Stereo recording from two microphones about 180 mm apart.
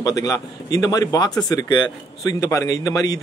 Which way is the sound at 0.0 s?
20° left (ahead or behind).